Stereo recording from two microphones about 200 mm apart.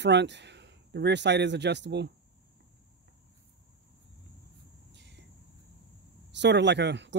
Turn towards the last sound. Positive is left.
turn(degrees=-60)  # may be behind; listen again after turning